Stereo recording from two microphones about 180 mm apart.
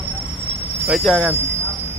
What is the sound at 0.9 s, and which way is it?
Speech, centre (ahead or behind).